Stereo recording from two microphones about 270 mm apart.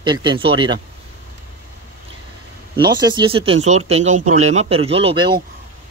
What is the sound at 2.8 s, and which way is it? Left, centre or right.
Speech, centre.